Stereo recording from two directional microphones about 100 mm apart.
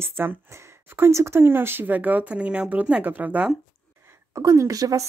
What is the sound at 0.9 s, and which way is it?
Speech, 25° right (ahead or behind).